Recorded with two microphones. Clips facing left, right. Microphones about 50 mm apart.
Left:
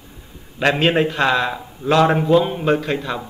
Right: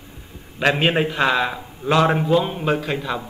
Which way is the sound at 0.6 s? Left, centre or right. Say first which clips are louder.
Left 2 dB; centre.